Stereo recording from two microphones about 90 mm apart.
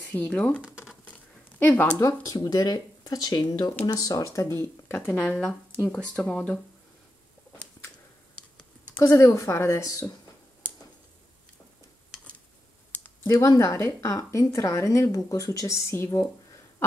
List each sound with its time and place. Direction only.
0.1 s speech: 15° left (ahead or behind)
1.6 s speech: 20° left (ahead or behind)
2.0 s speech: 40° left (ahead or behind); by 6.6 s 15° left (ahead or behind)
9.0 s speech: 35° left (ahead or behind)
13.6 s speech: 35° left (ahead or behind)